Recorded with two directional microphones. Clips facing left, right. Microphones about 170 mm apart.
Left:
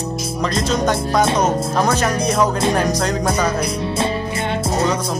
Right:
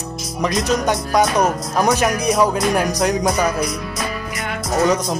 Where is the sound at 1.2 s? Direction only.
25° left (ahead or behind).